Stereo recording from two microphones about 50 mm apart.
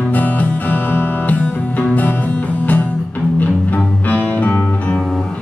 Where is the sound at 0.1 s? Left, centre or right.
Left.